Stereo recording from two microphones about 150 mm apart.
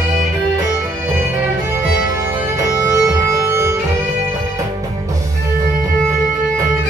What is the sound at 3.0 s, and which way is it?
Music, 20° right (ahead or behind).